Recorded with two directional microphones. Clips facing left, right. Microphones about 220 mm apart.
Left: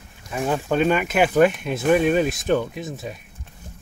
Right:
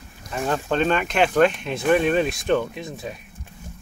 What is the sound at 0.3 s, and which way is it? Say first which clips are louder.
Speech: left 1 dB; 10° left (ahead or behind).